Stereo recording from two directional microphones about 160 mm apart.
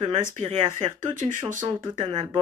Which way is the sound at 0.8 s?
55° right (ahead or behind).